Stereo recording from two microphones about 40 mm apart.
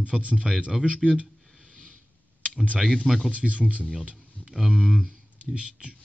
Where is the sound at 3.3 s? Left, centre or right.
Right.